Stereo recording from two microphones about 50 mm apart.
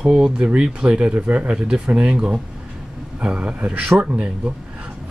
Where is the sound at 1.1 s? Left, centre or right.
Right.